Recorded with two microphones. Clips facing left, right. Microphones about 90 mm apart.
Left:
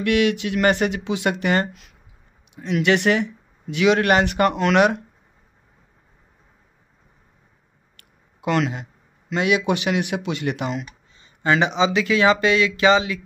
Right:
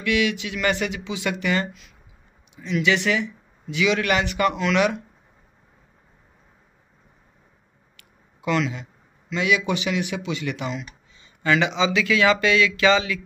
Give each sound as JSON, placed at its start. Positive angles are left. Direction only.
{"t": 0.0, "sound": "speech", "side_deg": 50}
{"t": 8.5, "sound": "speech", "side_deg": 50}
{"t": 11.4, "sound": "speech", "side_deg": 30}